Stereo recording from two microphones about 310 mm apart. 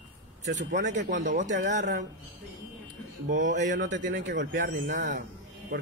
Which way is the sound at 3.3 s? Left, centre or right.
Right.